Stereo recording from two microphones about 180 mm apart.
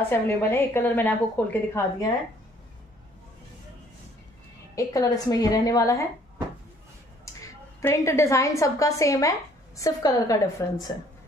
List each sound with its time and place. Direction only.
0.1 s a woman's voice: 15° left (ahead or behind)
4.7 s a woman's voice: 20° left (ahead or behind)
7.2 s a woman's voice: 15° left (ahead or behind)